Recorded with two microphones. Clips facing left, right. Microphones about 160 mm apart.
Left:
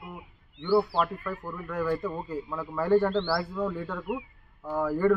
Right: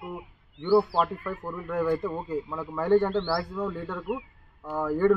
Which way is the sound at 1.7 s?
20° right (ahead or behind).